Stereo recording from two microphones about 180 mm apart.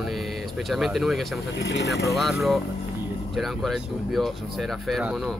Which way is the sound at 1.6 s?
65° left (ahead or behind).